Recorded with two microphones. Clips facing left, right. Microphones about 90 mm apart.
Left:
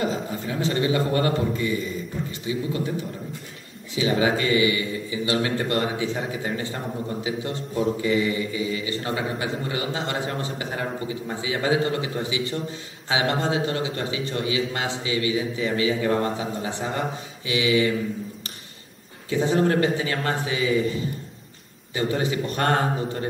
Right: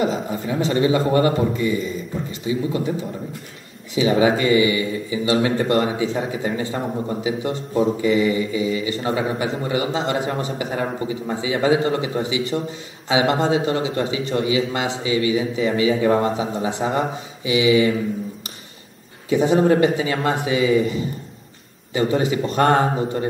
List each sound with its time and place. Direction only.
0.0 s speech: 20° right (ahead or behind)
19.2 s speech: 15° right (ahead or behind)